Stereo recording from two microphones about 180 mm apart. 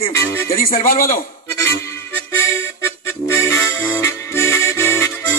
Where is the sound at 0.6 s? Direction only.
50° left (ahead or behind).